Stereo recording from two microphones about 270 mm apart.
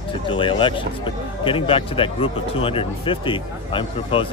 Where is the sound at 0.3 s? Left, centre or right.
Centre.